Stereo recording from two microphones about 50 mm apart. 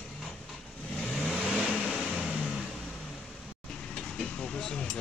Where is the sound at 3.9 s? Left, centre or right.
Centre.